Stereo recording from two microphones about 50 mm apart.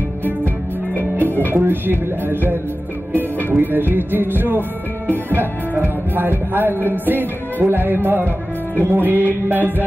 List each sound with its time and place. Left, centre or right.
1.5 s music: right
3.1 s speech: right
3.5 s music: right
5.8 s music: right